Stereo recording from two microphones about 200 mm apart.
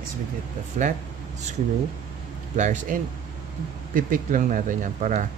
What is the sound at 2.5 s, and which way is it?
Speech, 40° right (ahead or behind).